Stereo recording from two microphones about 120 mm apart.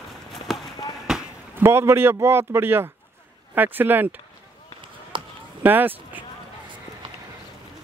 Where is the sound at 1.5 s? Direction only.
20° right (ahead or behind).